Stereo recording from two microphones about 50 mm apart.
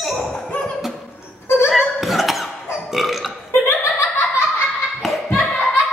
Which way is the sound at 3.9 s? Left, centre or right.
Left.